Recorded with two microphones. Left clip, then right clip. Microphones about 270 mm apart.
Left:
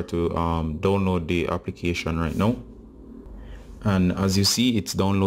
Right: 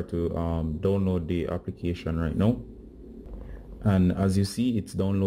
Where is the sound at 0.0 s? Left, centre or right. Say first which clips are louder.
Left 5 dB; centre.